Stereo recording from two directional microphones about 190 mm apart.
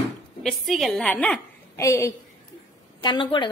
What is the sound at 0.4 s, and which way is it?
A woman's voice, centre (ahead or behind).